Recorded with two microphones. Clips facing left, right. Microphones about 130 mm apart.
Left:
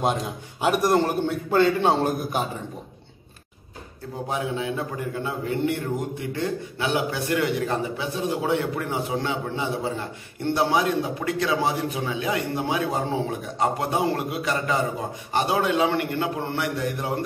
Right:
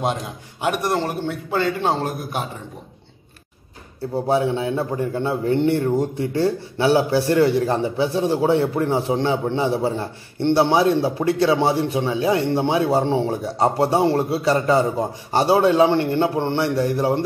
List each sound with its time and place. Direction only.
0.0 s a man's voice: centre (ahead or behind)
4.1 s a man's voice: 30° right (ahead or behind)